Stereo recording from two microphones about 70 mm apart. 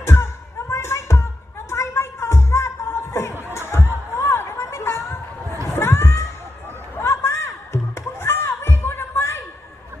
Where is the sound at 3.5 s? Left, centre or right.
Left.